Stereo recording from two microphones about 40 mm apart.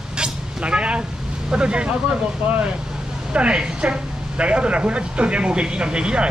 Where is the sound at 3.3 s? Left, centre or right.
Right.